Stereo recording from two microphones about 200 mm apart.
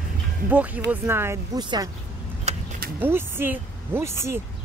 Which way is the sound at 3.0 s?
10° right (ahead or behind).